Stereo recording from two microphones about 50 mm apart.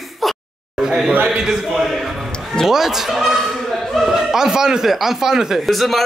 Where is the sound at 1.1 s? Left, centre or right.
Right.